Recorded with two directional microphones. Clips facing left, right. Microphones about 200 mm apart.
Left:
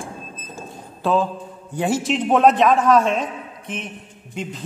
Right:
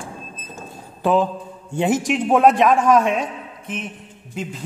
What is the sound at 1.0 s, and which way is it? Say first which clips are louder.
Mantra: right 2 dB; 15° right (ahead or behind).